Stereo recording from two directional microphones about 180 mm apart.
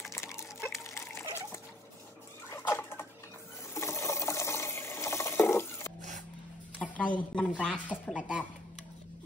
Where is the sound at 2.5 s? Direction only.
15° left (ahead or behind).